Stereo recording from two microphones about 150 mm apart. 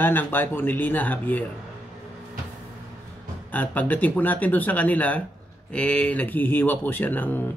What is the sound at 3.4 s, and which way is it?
Speech, 10° left (ahead or behind).